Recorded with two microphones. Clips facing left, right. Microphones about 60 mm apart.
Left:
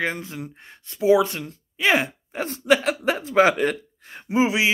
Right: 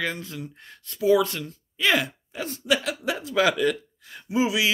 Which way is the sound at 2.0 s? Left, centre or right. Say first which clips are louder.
Left 3 dB; left.